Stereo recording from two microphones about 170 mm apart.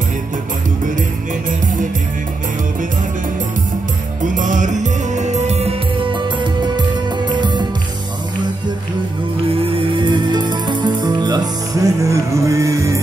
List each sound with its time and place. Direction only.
4.3 s music: 50° right (ahead or behind); by 7.6 s 25° right (ahead or behind)
9.5 s music: 30° right (ahead or behind)